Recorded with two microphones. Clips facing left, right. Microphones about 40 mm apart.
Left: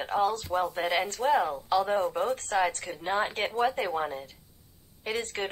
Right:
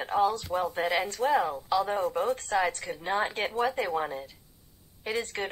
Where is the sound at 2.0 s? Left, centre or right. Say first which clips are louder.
Even; centre.